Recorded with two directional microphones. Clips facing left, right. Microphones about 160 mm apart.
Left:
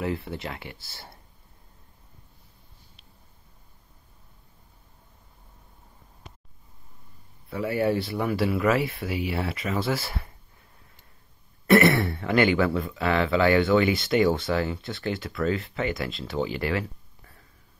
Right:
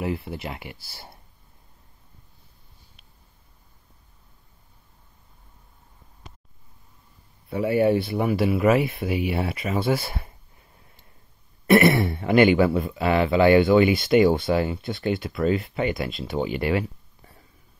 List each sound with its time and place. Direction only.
0.0 s speech: 15° right (ahead or behind)
7.4 s speech: 20° right (ahead or behind)
11.6 s speech: 15° right (ahead or behind)